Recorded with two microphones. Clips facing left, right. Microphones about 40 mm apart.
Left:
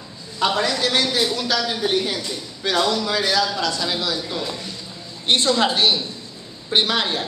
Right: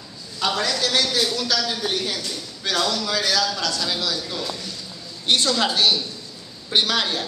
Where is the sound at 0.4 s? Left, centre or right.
Left.